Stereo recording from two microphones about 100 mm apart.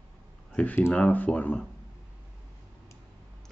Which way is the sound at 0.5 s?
15° left (ahead or behind).